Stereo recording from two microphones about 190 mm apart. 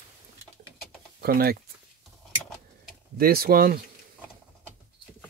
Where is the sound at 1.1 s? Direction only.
55° right (ahead or behind).